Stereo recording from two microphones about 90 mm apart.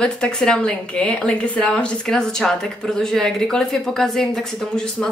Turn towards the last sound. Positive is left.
turn(degrees=5)  # may be behind; listen again after turning